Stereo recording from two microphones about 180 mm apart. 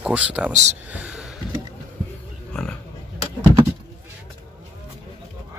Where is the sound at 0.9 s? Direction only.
5° right (ahead or behind).